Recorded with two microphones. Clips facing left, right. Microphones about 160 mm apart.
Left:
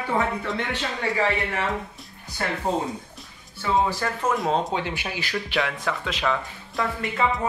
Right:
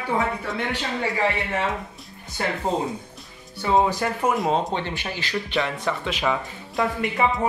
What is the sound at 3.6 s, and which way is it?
Speech, 20° right (ahead or behind).